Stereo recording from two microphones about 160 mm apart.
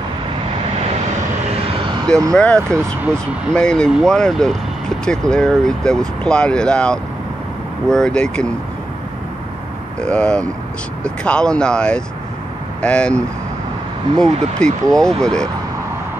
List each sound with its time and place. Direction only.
2.3 s speech: 5° left (ahead or behind)
9.9 s speech: 5° left (ahead or behind)